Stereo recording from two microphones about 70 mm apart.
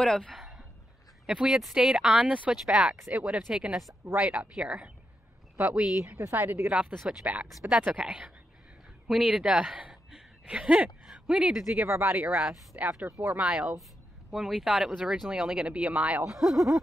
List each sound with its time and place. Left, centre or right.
0.0 s speech: centre
1.2 s a woman's voice: centre
2.5 s speech: centre
6.1 s a woman's voice: right; by 11.8 s centre
11.8 s speech: right
16.3 s speech: centre